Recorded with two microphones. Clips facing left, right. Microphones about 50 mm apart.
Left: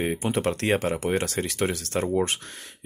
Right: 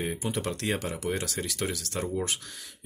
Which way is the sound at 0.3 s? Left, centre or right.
Left.